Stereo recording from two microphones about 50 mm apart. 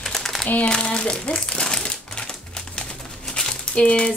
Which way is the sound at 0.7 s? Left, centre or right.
Centre.